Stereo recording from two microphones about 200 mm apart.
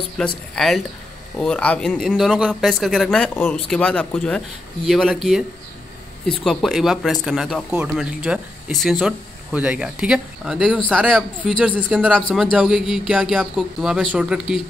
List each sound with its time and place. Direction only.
0.2 s speech: centre (ahead or behind)
6.4 s speech: centre (ahead or behind)